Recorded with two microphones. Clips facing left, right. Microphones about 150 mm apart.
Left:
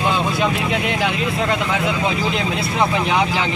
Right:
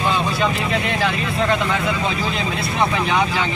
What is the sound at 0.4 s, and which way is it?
Speech, 15° left (ahead or behind).